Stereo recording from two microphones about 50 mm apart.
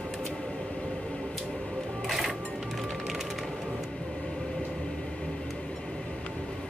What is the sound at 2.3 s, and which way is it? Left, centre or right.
Music, left.